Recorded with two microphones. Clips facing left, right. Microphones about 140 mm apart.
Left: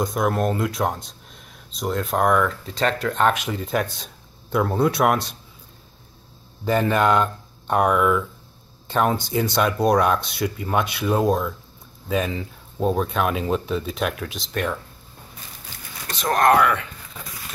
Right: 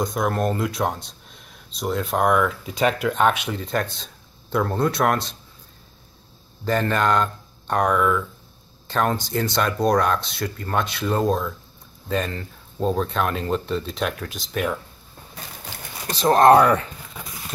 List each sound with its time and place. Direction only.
0.0 s speech: centre (ahead or behind)
6.6 s speech: 10° left (ahead or behind)
16.1 s speech: 30° right (ahead or behind)